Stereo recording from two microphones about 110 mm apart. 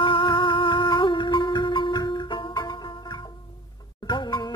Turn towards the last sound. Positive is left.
turn(degrees=40)  # may be behind; listen again after turning